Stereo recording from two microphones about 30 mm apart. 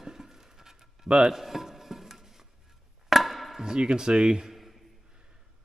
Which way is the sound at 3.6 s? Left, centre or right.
Right.